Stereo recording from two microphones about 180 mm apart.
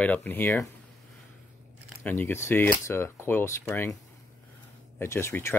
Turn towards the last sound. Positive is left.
turn(degrees=15)  # may be behind; listen again after turning